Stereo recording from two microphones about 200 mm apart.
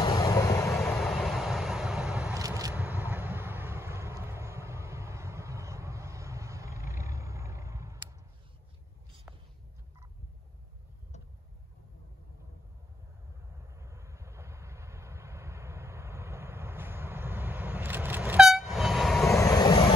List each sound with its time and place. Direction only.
0.0 s vehicle: 15° left (ahead or behind)
0.9 s vehicle: centre (ahead or behind)
2.3 s vehicle: 15° right (ahead or behind)
13.7 s vehicle: 15° right (ahead or behind)
19.3 s vehicle: 20° left (ahead or behind)